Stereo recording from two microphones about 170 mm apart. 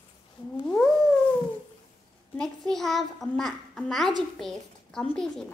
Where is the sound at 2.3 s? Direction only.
Centre (ahead or behind).